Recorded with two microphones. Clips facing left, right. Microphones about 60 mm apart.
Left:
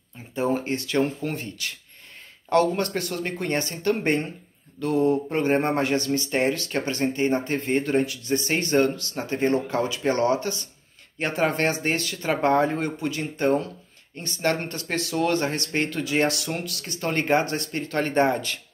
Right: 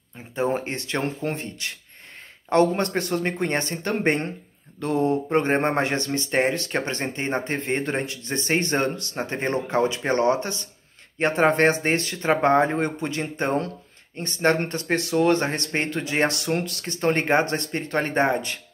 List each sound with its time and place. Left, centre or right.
0.3 s speech: right